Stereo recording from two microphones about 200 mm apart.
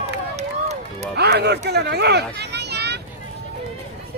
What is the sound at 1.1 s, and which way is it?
Run, 55° right (ahead or behind).